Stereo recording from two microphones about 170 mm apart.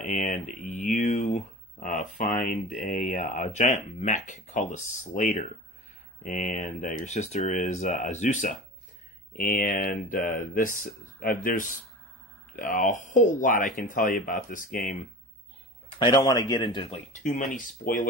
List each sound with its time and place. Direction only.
0.0 s speech: centre (ahead or behind)
0.3 s speech: 45° left (ahead or behind)
2.7 s speech: 40° left (ahead or behind)
6.5 s speech: 45° left (ahead or behind)
16.0 s speech: 25° left (ahead or behind); by 18.0 s 50° left (ahead or behind)